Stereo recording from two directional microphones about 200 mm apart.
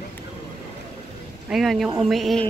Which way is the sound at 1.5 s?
Centre (ahead or behind).